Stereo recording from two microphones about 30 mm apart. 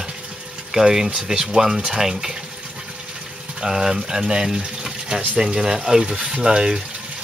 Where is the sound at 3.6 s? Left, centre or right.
Right.